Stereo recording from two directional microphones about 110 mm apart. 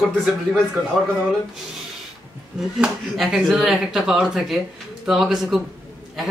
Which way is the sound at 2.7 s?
5° right (ahead or behind).